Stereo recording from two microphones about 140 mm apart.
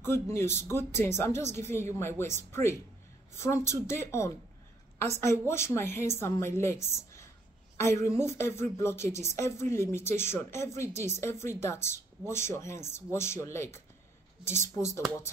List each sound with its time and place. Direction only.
0.0 s a woman's voice: 15° left (ahead or behind)